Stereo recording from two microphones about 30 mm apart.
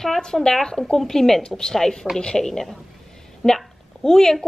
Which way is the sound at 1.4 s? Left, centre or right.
Left.